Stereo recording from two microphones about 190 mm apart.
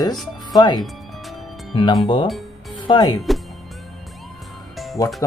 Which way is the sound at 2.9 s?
20° left (ahead or behind).